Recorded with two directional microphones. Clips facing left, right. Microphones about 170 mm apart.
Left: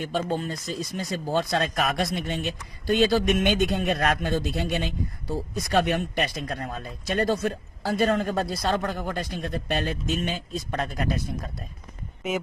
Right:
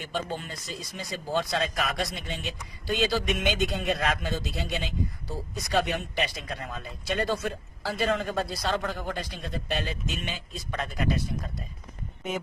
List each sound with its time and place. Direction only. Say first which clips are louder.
0.0 s speech: left 6 dB; 45° left (ahead or behind)